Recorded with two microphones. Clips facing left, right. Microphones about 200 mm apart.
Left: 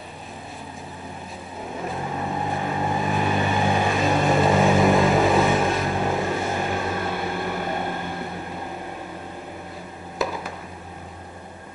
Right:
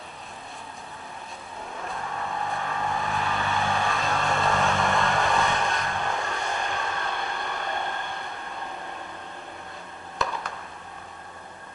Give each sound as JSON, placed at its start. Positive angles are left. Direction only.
{"t": 2.0, "sound": "vehicle", "side_deg": 20}
{"t": 4.6, "sound": "vehicle", "side_deg": 5}